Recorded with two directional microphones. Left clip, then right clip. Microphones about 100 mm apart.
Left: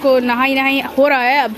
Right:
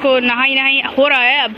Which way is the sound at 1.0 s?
40° left (ahead or behind).